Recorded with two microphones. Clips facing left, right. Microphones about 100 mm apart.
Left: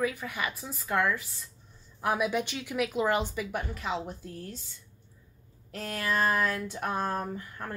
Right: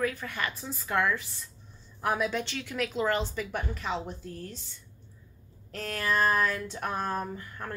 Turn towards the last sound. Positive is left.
turn(degrees=5)  # may be behind; listen again after turning